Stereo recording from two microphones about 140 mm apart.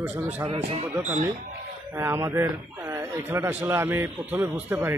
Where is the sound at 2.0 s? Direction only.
20° right (ahead or behind).